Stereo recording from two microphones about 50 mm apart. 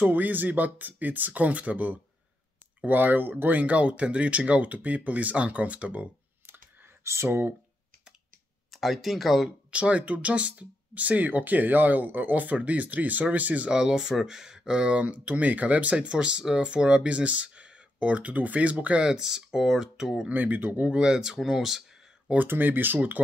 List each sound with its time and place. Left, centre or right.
0.0 s speech: right
7.2 s speech: right
8.7 s speech: centre
9.7 s speech: right
13.7 s speech: centre
19.0 s speech: centre
20.2 s speech: right
20.8 s speech: centre
22.5 s speech: right